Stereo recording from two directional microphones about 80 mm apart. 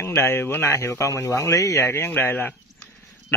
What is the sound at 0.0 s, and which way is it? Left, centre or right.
Speech, left.